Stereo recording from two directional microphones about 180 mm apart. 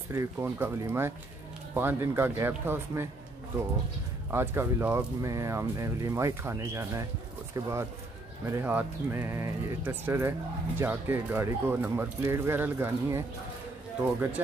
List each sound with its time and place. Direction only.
0.1 s speech: 15° right (ahead or behind)
4.3 s speech: 15° right (ahead or behind)